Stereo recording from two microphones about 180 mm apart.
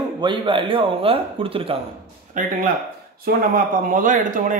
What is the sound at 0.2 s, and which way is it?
Speech, 25° right (ahead or behind).